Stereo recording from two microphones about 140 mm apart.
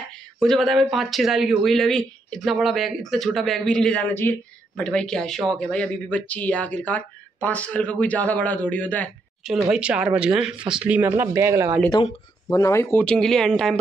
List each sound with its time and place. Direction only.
0.4 s speech: centre (ahead or behind)
9.7 s speech: 5° right (ahead or behind)
12.4 s speech: 20° left (ahead or behind)
13.0 s speech: 5° left (ahead or behind)